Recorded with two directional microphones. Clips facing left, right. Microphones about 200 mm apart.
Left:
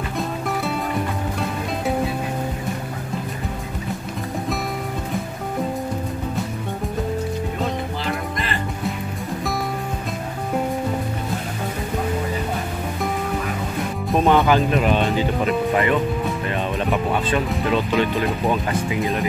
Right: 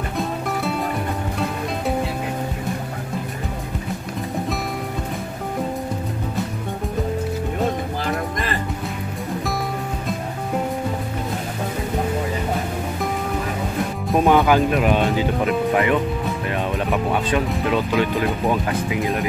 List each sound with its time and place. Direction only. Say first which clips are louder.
14.1 s speech: right 1 dB; centre (ahead or behind)